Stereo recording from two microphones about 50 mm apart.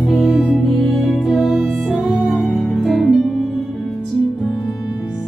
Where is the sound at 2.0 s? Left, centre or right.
Centre.